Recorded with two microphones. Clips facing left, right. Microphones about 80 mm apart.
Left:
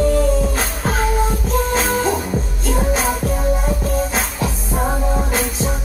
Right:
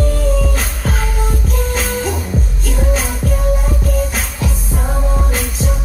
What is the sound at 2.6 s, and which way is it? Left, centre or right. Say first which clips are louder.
Music: left 2 dB; left.